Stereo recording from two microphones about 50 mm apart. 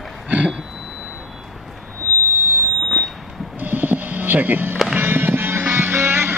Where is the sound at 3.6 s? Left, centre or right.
Right.